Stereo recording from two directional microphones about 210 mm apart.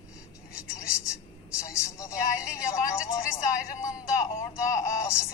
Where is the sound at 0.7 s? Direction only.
15° left (ahead or behind).